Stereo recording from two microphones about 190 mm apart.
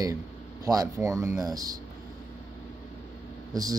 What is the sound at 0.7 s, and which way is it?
Speech, 20° right (ahead or behind).